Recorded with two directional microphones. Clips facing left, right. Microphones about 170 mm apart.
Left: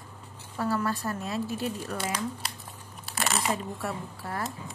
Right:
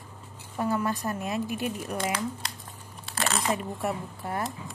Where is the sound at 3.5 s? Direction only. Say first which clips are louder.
Right 2 dB; 20° right (ahead or behind).